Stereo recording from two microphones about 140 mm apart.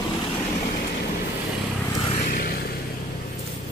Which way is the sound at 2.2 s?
90° left.